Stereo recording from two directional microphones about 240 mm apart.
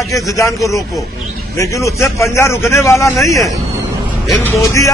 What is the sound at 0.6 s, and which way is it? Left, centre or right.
A man's voice, centre.